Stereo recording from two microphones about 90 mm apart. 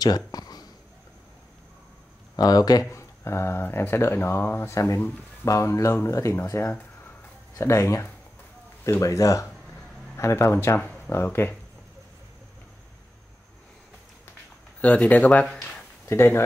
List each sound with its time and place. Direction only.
0.0 s speech: 45° left (ahead or behind)
2.3 s speech: 45° left (ahead or behind)
2.9 s speech: 30° left (ahead or behind)
14.8 s speech: 15° left (ahead or behind)
16.1 s speech: 30° left (ahead or behind)